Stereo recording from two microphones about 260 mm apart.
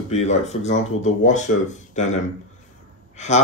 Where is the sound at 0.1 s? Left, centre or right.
Left.